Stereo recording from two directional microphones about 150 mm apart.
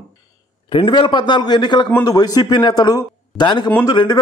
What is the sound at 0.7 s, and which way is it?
A man's voice, 35° left (ahead or behind).